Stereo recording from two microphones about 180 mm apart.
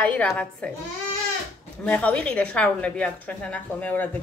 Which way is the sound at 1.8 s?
5° left (ahead or behind).